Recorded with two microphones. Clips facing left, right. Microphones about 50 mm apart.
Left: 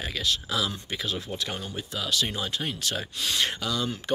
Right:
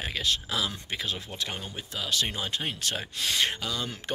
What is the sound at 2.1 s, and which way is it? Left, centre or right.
Speech, right.